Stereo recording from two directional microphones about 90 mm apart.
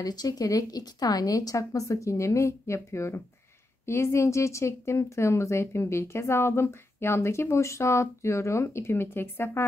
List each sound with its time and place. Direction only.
0.0 s a woman's voice: 45° left (ahead or behind); by 9.7 s 25° left (ahead or behind)